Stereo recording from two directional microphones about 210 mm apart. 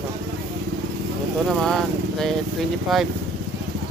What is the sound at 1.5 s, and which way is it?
Speech, centre (ahead or behind).